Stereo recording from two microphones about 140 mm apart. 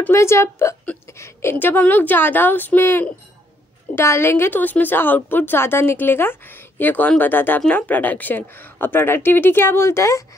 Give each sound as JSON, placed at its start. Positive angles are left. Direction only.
{"t": 0.0, "sound": "a woman's voice", "side_deg": 20}